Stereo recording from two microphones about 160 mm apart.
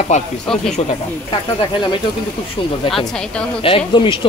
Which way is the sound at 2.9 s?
Centre (ahead or behind).